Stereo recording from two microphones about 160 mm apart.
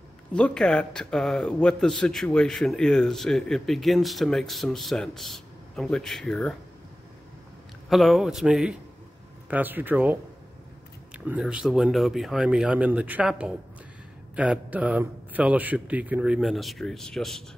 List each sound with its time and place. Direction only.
0.3 s a man's voice: 5° left (ahead or behind)
7.9 s a man's voice: centre (ahead or behind)
11.1 s a man's voice: 10° right (ahead or behind)